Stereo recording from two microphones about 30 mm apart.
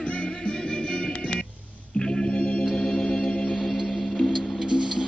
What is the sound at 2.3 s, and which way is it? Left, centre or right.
Music, left.